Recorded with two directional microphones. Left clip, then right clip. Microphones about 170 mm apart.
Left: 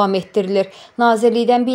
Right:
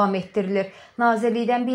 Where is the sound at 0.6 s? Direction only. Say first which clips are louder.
Left 6 dB; 25° left (ahead or behind).